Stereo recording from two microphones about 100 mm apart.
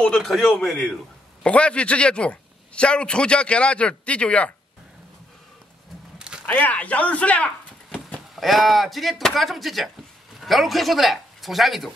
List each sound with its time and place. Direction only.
0.2 s a man's voice: centre (ahead or behind)
6.1 s a sound: 10° right (ahead or behind)
6.4 s speech: 15° left (ahead or behind)
8.4 s speech: centre (ahead or behind)